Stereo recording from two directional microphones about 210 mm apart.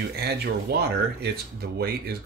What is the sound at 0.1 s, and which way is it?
Speech, 50° right (ahead or behind).